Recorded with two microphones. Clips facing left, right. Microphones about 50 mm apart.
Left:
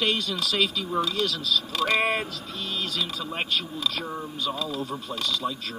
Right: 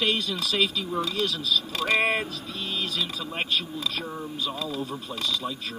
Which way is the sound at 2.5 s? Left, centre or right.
Right.